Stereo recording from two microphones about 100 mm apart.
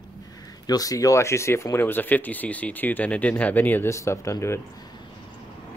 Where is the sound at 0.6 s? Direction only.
40° left (ahead or behind); by 3.9 s 20° left (ahead or behind).